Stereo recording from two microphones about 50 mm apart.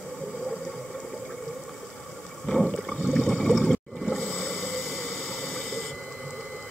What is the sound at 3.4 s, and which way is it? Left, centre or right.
Water, centre.